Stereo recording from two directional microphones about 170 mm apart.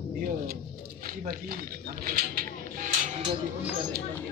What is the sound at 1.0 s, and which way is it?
Speech, 55° right (ahead or behind).